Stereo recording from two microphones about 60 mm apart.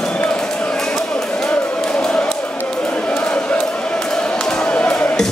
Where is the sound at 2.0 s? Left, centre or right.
Centre.